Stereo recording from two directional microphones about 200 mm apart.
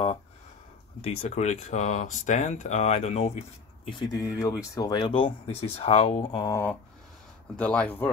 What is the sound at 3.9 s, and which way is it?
Speech, 20° left (ahead or behind).